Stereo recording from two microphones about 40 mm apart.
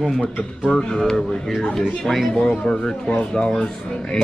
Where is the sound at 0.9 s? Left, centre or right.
Centre.